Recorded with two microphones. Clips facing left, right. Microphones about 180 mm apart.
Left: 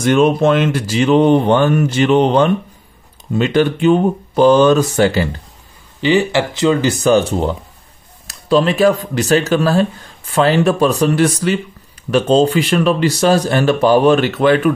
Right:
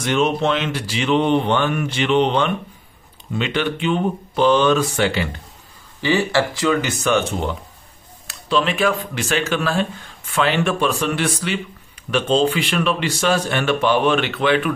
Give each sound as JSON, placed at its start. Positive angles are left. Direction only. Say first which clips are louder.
{"t": 0.0, "sound": "speech", "louder": "left 7 dB", "side_deg": 50}
{"t": 5.9, "sound": "speech", "louder": "left 4 dB", "side_deg": 20}